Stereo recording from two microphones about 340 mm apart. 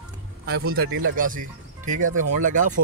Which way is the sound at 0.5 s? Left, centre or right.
Right.